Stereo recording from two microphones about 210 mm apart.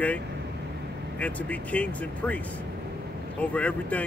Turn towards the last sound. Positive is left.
turn(degrees=5)  # may be behind; listen again after turning